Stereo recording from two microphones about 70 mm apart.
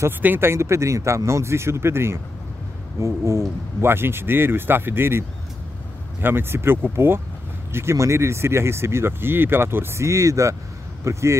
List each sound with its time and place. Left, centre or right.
0.2 s speech: right
0.5 s speech: right
6.2 s speech: right